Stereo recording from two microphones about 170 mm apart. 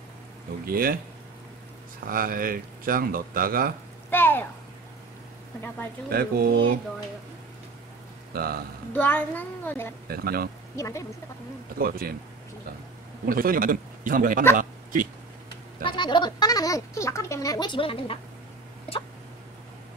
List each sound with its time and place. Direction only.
0.7 s speech: 60° right (ahead or behind)
2.0 s speech: 55° right (ahead or behind)
4.1 s a sound: 10° left (ahead or behind)
6.0 s speech: 60° right (ahead or behind)
8.3 s speech: 65° right (ahead or behind)
8.9 s a woman's voice: 10° left (ahead or behind)
10.0 s speech: 65° right (ahead or behind)
10.8 s a woman's voice: 15° left (ahead or behind)
11.8 s speech: 60° right (ahead or behind)
13.2 s speech: 55° right (ahead or behind)
14.6 s a sound: 50° right (ahead or behind)
15.8 s speech: 30° left (ahead or behind)